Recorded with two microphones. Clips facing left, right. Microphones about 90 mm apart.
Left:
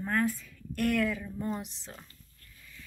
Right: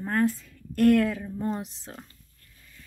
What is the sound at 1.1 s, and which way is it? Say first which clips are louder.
Speech: right 4 dB; 55° right (ahead or behind).